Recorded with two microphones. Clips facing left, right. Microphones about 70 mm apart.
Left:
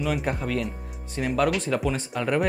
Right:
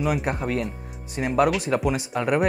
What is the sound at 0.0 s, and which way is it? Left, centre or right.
Speech, centre.